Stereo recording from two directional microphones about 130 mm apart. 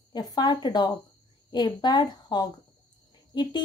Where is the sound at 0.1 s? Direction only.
30° left (ahead or behind).